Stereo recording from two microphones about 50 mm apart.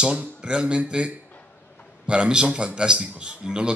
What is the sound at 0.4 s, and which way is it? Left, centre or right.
A man's voice, centre.